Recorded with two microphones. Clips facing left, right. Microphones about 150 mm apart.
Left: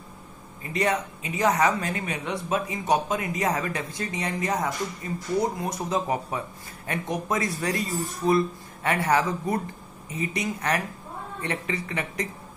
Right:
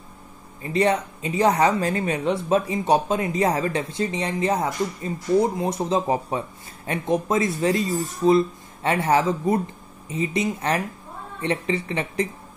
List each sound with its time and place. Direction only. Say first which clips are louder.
0.6 s speech: right 5 dB; 30° right (ahead or behind)